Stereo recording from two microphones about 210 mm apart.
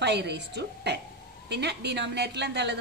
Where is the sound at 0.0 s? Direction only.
55° right (ahead or behind).